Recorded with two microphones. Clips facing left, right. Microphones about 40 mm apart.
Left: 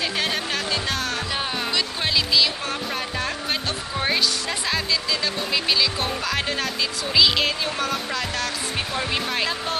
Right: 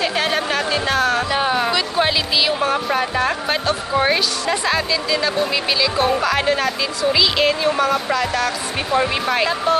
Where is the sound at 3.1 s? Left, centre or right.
Centre.